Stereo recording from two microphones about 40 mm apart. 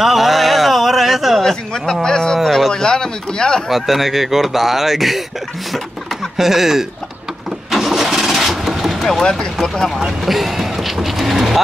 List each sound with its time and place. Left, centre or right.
0.0 s a sound: centre
1.4 s a sound: centre
2.3 s a sound: centre
2.7 s speech: centre
3.6 s speech: centre
6.3 s speech: centre
7.7 s engine starting: centre
9.2 s speech: centre
10.0 s vehicle: centre